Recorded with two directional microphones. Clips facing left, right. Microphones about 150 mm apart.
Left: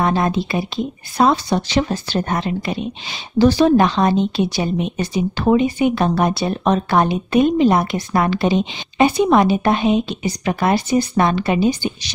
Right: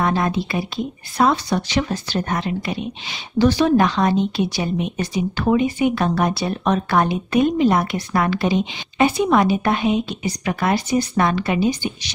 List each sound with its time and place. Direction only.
0.0 s speech: 30° left (ahead or behind)